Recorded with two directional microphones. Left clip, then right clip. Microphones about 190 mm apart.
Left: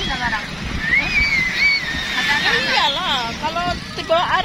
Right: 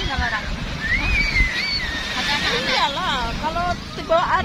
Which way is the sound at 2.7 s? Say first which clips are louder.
Left 3 dB; 45° left (ahead or behind).